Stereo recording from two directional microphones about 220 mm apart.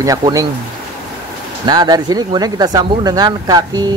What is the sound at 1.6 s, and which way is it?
Speech, 20° right (ahead or behind).